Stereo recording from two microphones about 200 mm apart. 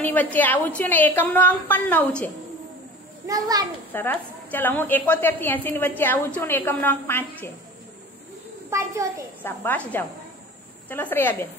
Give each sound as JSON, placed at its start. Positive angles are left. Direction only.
{"t": 0.0, "sound": "a woman's voice", "side_deg": 10}
{"t": 3.3, "sound": "a child's voice", "side_deg": -20}
{"t": 3.9, "sound": "a woman's voice", "side_deg": 10}
{"t": 8.6, "sound": "a child's voice", "side_deg": -15}
{"t": 9.4, "sound": "a woman's voice", "side_deg": 10}